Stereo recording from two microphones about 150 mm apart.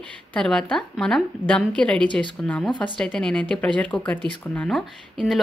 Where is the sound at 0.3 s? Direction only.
5° left (ahead or behind).